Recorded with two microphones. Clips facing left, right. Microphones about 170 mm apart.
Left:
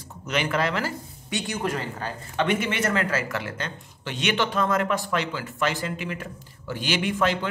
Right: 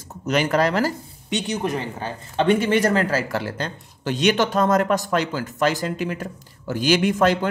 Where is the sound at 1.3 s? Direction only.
20° right (ahead or behind).